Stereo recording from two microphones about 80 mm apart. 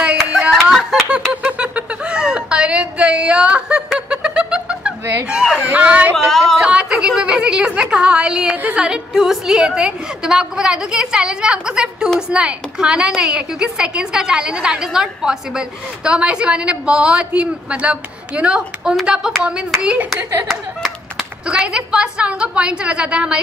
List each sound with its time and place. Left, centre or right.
0.2 s a sound: centre
1.6 s a sound: centre
5.3 s a woman's voice: centre
5.7 s a woman's voice: right
20.4 s clapping: centre
21.5 s a woman's voice: centre